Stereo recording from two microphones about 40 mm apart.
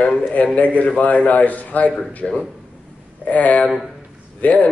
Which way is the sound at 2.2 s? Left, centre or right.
Left.